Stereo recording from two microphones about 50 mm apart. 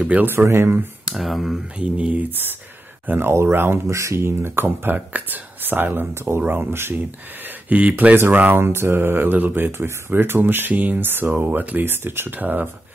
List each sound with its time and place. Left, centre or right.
0.4 s speech: right
1.1 s speech: centre
1.8 s speech: right
3.1 s speech: right
3.8 s speech: right
6.4 s speech: right
6.7 s speech: right
7.7 s speech: right
8.5 s speech: right
9.7 s speech: right
12.4 s speech: right